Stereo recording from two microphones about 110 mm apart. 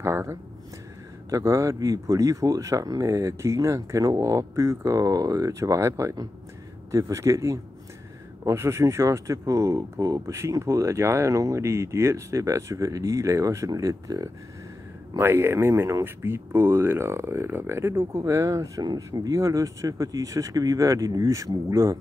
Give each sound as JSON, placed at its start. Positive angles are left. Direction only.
{"t": 0.0, "sound": "speech", "side_deg": -25}